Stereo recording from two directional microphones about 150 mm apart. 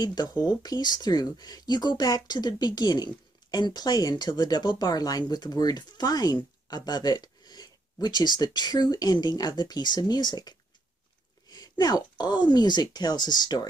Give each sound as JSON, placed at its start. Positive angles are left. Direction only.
{"t": 0.0, "sound": "speech", "side_deg": 30}